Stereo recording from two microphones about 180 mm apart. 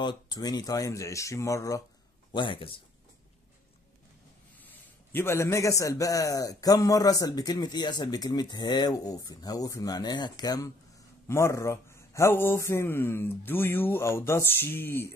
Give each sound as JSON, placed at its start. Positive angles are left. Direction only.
{"t": 0.0, "sound": "a man's voice", "side_deg": 25}
{"t": 2.3, "sound": "a man's voice", "side_deg": 30}
{"t": 5.1, "sound": "a man's voice", "side_deg": 15}